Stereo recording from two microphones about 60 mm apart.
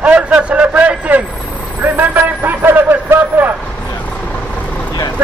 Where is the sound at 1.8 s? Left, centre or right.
Right.